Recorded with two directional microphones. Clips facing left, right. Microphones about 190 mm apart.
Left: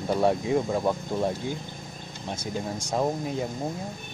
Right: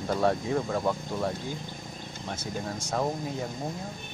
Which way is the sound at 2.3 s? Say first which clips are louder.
Left 3 dB; 15° left (ahead or behind).